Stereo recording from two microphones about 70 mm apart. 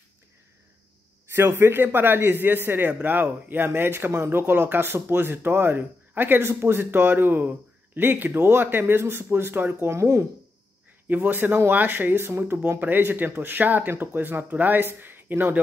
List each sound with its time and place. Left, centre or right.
1.3 s speech: right
11.1 s speech: right